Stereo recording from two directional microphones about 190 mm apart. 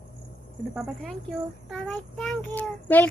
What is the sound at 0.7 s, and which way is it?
A woman's voice, 5° right (ahead or behind).